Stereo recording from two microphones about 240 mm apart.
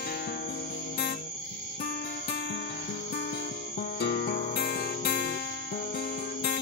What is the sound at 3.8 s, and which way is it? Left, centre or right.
Music, left.